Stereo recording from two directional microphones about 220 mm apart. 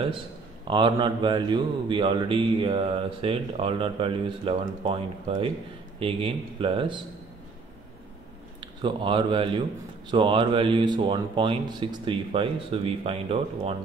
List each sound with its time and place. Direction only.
0.7 s speech: 20° right (ahead or behind)
8.5 s speech: 20° right (ahead or behind)